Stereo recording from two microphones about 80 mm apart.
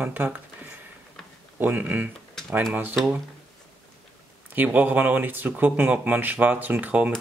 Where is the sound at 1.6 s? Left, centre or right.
Right.